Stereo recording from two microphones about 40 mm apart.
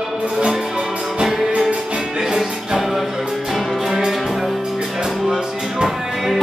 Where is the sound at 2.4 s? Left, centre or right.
Centre.